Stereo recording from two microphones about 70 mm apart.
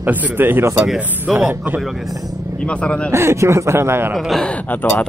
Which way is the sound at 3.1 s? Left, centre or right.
Right.